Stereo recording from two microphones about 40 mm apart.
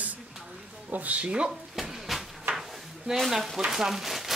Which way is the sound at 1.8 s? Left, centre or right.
Centre.